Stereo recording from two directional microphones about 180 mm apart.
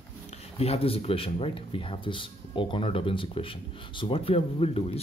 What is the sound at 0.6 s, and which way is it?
Speech, 35° left (ahead or behind).